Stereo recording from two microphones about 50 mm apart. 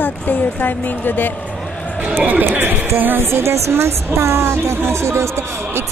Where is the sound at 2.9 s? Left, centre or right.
Right.